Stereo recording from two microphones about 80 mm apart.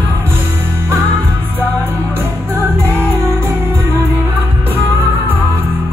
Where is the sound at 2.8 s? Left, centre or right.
Right.